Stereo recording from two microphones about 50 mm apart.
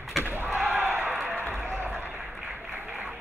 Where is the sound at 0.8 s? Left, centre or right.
Right.